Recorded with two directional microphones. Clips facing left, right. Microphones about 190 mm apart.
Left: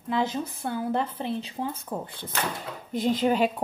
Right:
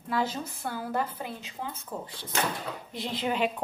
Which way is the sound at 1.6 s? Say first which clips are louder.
Left 5 dB; 55° left (ahead or behind).